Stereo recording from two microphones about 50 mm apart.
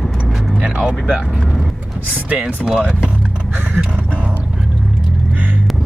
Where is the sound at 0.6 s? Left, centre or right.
Right.